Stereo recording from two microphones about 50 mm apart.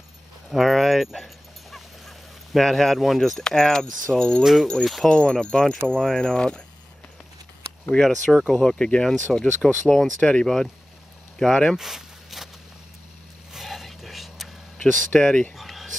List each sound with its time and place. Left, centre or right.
0.5 s dog: centre
3.0 s speech: centre
4.4 s speech: centre
5.1 s speech: centre
7.9 s speech: centre
8.4 s speech: centre
8.6 s speech: centre
11.7 s a sound: centre
13.5 s a sound: centre
15.1 s speech: centre
15.5 s a sound: centre